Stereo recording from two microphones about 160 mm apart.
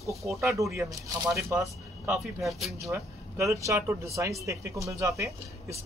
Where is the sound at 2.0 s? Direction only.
Centre (ahead or behind).